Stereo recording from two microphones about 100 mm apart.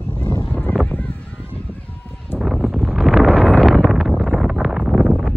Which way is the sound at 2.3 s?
5° right (ahead or behind).